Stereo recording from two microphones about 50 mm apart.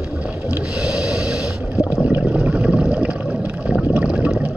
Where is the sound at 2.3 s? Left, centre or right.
Right.